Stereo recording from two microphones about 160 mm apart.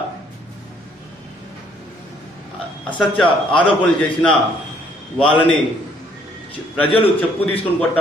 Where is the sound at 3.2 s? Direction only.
30° left (ahead or behind).